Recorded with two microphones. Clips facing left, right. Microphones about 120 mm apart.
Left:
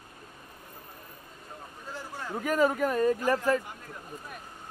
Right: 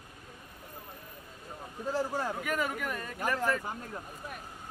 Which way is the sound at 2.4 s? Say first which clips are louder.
Left 8 dB; 35° left (ahead or behind).